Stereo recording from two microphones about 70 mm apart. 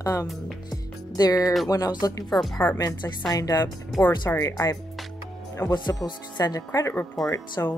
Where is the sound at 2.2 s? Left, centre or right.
Centre.